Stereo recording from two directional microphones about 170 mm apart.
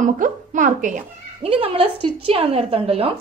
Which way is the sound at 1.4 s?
35° right (ahead or behind).